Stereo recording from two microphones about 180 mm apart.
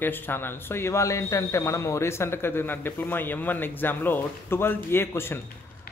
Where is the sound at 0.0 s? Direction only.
10° left (ahead or behind).